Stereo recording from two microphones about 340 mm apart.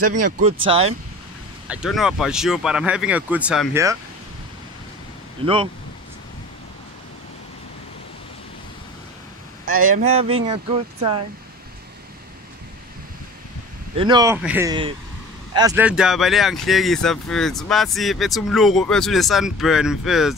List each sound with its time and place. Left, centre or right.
0.7 s speech: centre
1.7 s speech: centre
5.4 s speech: centre
9.7 s speech: right
9.9 s speech: centre
13.9 s speech: centre